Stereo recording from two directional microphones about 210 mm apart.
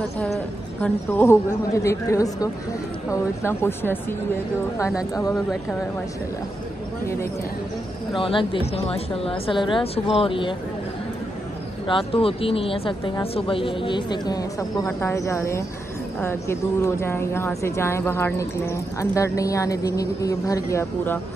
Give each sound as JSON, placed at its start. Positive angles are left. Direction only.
{"t": 0.2, "sound": "speech", "side_deg": 5}
{"t": 8.2, "sound": "speech", "side_deg": 25}
{"t": 11.9, "sound": "speech", "side_deg": 25}